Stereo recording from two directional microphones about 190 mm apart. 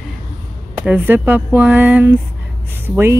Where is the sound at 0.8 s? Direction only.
10° right (ahead or behind).